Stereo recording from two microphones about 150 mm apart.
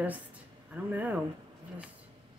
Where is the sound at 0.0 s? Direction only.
10° right (ahead or behind).